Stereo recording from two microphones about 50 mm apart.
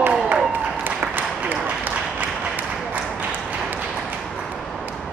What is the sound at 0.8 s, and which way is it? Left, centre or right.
Applause, right.